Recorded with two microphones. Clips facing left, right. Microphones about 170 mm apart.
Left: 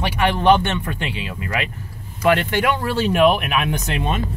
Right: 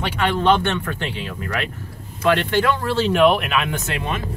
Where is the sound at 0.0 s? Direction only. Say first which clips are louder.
Left 2 dB; 10° left (ahead or behind).